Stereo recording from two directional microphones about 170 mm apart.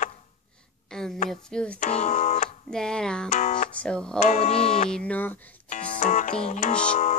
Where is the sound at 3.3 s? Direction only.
40° left (ahead or behind).